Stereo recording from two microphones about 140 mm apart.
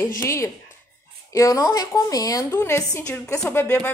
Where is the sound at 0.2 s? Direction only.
20° left (ahead or behind).